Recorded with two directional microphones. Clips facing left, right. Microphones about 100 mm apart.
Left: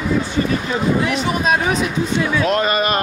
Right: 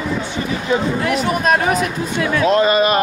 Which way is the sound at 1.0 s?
Centre (ahead or behind).